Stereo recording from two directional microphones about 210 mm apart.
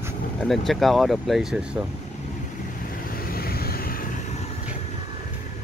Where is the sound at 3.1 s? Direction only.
45° left (ahead or behind).